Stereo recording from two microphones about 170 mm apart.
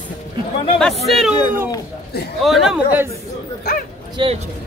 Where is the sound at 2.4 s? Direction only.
Centre (ahead or behind).